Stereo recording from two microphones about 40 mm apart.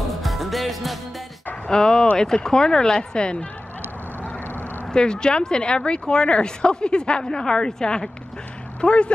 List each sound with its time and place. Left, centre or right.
0.2 s music: centre
1.7 s speech: centre
4.9 s speech: left